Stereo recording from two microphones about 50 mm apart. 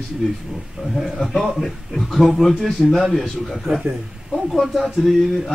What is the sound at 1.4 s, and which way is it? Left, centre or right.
Speech, centre.